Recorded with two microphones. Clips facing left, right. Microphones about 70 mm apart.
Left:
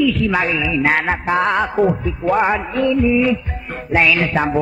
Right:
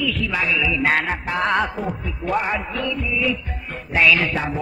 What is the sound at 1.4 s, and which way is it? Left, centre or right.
Speech, centre.